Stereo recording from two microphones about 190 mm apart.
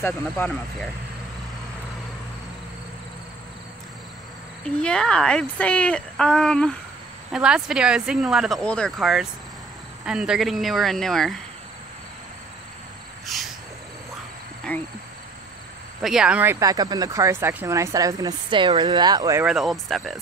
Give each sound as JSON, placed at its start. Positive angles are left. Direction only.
{"t": 0.0, "sound": "speech", "side_deg": 10}
{"t": 4.6, "sound": "speech", "side_deg": 5}
{"t": 14.7, "sound": "speech", "side_deg": 5}
{"t": 16.0, "sound": "speech", "side_deg": -5}
{"t": 19.4, "sound": "speech", "side_deg": 0}